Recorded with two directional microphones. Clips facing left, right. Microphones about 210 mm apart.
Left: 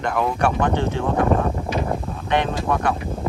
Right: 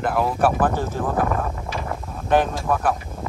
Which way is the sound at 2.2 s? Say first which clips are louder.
Right 2 dB; 5° right (ahead or behind).